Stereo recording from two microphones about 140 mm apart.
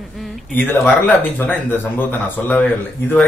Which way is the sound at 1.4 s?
10° left (ahead or behind).